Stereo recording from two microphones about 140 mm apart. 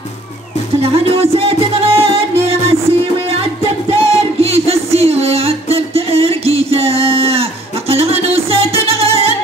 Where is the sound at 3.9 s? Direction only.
45° right (ahead or behind).